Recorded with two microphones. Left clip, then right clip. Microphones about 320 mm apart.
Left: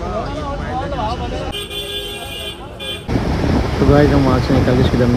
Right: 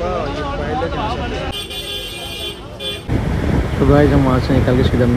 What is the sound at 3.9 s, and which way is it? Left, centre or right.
Speech, centre.